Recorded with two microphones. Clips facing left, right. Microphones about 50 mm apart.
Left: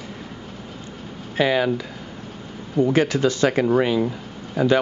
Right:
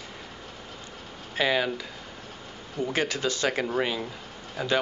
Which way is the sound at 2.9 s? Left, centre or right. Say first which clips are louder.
Left 5 dB; left.